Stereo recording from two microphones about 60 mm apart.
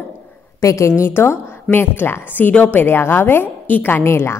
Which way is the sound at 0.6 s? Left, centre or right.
Left.